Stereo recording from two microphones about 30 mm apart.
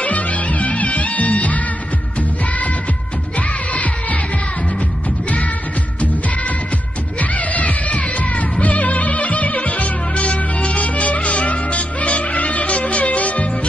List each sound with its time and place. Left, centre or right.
0.0 s music: left
3.3 s music: left
7.2 s music: left